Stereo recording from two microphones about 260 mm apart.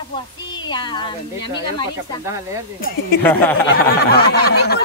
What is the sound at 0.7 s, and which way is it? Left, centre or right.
Speech, centre.